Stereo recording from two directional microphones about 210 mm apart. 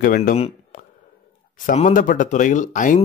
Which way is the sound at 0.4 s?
40° left (ahead or behind).